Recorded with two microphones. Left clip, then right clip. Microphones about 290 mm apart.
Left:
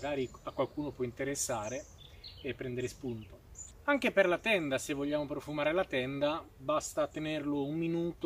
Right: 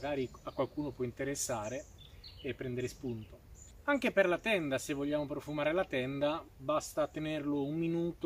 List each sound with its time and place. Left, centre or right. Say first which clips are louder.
0.0 s speech: left 1 dB; centre